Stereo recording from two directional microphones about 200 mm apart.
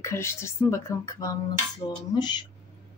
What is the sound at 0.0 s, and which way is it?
Speech, 15° left (ahead or behind).